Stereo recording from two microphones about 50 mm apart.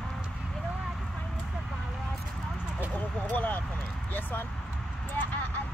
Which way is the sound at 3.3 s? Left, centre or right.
Left.